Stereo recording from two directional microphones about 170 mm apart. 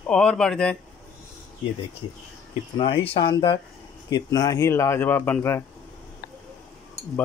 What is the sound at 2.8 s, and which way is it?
Speech, 35° left (ahead or behind).